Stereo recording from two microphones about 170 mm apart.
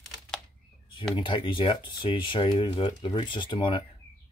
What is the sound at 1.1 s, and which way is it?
Speech, 30° left (ahead or behind).